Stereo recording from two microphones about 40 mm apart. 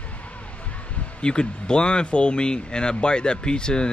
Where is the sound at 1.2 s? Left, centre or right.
Left.